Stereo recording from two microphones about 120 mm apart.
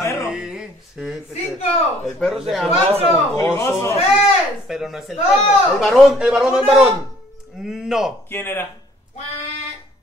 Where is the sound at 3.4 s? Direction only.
20° left (ahead or behind).